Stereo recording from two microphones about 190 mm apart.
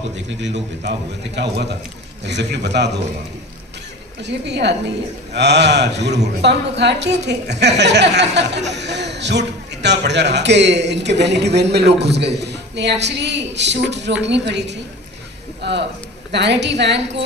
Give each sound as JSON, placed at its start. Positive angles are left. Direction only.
{"t": 0.4, "sound": "speech", "side_deg": -65}
{"t": 4.2, "sound": "a woman's voice", "side_deg": -65}